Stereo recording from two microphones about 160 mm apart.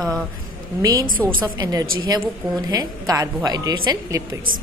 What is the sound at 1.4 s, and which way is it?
A woman's voice, 25° right (ahead or behind).